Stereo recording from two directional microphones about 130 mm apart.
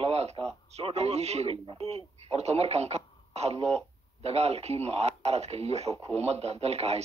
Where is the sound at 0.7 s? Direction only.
55° right (ahead or behind).